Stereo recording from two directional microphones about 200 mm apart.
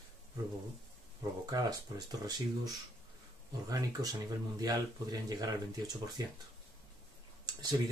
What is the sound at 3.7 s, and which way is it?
Speech, 20° right (ahead or behind).